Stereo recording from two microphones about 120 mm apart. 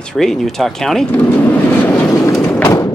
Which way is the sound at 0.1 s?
5° left (ahead or behind).